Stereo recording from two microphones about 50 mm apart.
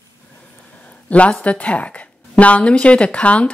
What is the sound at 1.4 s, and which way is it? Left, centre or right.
Speech, left.